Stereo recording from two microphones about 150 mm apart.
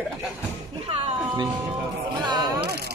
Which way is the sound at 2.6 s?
90° right.